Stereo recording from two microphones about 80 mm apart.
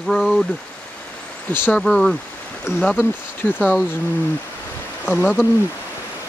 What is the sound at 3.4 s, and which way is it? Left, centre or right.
Speech, left.